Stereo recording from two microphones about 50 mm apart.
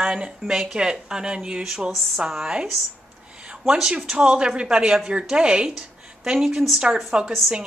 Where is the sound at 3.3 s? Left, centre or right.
Centre.